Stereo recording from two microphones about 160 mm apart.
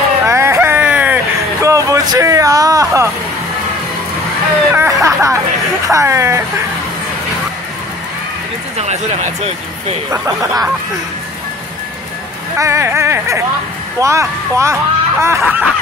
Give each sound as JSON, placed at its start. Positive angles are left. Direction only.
{"t": 0.3, "sound": "a sound", "side_deg": -15}
{"t": 4.7, "sound": "a sound", "side_deg": -20}
{"t": 5.9, "sound": "speech", "side_deg": -20}
{"t": 8.7, "sound": "speech", "side_deg": -45}
{"t": 10.1, "sound": "speech", "side_deg": -20}
{"t": 12.5, "sound": "speech", "side_deg": -20}